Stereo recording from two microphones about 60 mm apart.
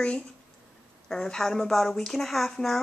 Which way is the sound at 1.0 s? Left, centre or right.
Centre.